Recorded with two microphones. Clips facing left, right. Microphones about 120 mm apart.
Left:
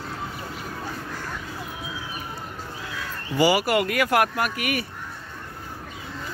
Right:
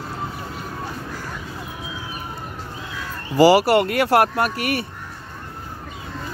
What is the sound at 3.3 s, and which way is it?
Speech, 40° right (ahead or behind).